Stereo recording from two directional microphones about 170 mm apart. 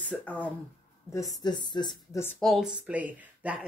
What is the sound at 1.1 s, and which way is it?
Speech, 20° left (ahead or behind).